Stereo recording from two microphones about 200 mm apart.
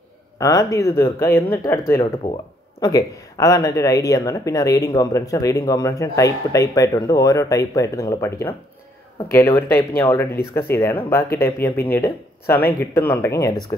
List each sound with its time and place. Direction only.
0.4 s speech: 15° left (ahead or behind)
9.6 s speech: 10° left (ahead or behind)
12.5 s speech: 50° left (ahead or behind)
12.9 s speech: 10° left (ahead or behind)